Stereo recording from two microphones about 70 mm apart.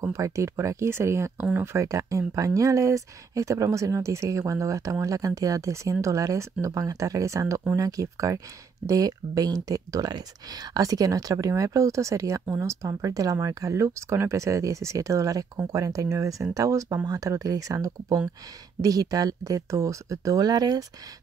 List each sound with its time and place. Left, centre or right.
0.0 s speech: right
12.8 s speech: right